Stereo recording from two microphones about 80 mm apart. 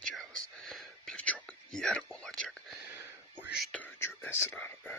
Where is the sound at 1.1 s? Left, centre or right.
Centre.